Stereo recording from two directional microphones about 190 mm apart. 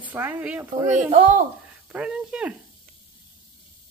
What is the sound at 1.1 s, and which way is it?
Speech, 40° right (ahead or behind).